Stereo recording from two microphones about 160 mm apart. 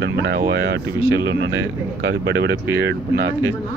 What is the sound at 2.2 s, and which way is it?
Speech, 90° right.